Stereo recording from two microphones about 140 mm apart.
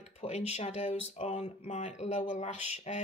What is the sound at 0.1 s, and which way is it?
Speech, 50° left (ahead or behind).